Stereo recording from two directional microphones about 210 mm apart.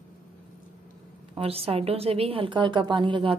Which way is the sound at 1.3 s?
30° right (ahead or behind).